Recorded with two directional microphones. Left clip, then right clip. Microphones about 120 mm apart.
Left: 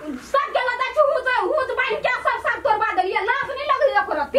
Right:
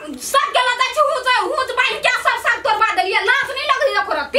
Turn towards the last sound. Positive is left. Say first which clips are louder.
# right 2 dB
turn(degrees=-15)  # may be behind; listen again after turning